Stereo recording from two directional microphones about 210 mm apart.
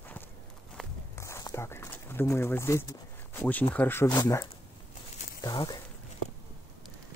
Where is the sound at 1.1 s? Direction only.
15° left (ahead or behind).